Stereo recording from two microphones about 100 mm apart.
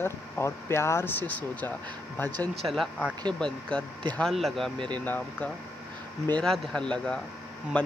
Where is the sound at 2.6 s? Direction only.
Centre (ahead or behind).